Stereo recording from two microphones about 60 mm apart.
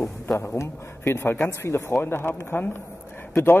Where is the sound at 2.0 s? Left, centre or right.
Left.